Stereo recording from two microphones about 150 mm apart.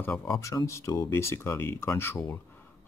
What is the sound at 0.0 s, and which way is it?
Speech, 10° left (ahead or behind).